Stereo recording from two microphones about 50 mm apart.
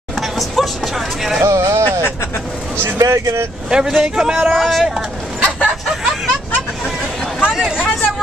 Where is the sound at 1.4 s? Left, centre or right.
Right.